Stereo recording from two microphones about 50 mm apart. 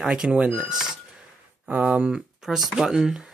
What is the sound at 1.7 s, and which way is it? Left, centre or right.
Speech, right.